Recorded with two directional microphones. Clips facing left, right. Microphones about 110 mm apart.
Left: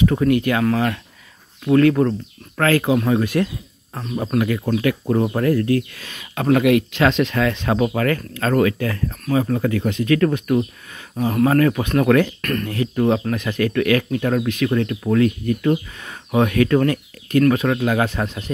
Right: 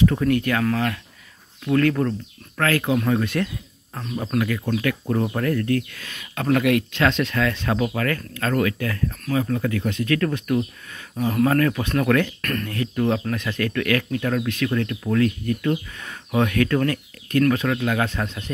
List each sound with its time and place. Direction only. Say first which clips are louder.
0.0 s speech: left 3 dB; 10° left (ahead or behind); by 2.9 s 30° left (ahead or behind)
2.9 s speech: left 3 dB; 15° left (ahead or behind)
4.4 s speech: left 3 dB; 25° left (ahead or behind)
12.4 s speech: left 3 dB; 5° left (ahead or behind)
12.6 s speech: left 4 dB; 20° left (ahead or behind)
17.7 s speech: left 4 dB; 30° left (ahead or behind)